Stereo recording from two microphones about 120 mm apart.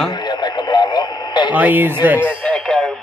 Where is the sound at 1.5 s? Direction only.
15° right (ahead or behind).